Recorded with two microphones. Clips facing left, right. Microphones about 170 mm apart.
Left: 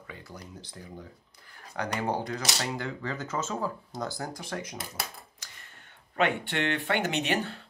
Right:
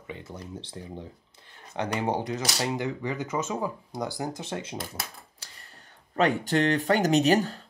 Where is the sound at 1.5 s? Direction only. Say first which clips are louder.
Right 3 dB; 25° right (ahead or behind).